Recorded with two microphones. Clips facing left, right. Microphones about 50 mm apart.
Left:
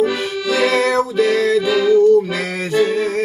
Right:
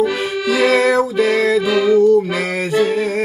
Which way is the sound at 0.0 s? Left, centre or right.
Centre.